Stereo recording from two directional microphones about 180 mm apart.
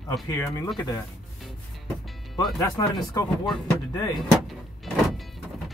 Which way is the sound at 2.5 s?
20° left (ahead or behind).